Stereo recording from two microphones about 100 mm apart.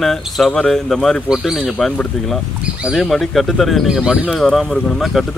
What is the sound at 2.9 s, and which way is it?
Speech, centre (ahead or behind).